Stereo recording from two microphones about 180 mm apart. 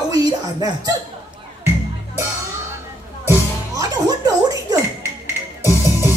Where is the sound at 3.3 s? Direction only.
20° right (ahead or behind).